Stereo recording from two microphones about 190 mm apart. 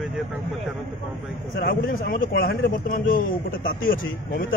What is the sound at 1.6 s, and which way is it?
Speech, 70° left (ahead or behind).